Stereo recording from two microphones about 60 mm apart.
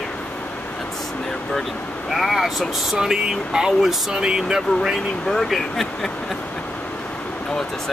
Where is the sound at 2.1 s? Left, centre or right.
Centre.